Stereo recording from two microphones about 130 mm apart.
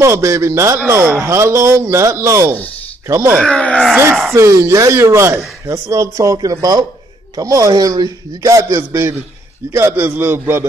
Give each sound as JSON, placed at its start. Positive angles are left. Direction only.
{"t": 0.0, "sound": "speech", "side_deg": -20}
{"t": 3.4, "sound": "speech", "side_deg": 5}
{"t": 3.9, "sound": "speech", "side_deg": -15}